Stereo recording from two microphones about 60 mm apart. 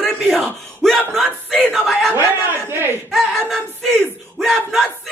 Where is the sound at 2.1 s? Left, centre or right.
Right.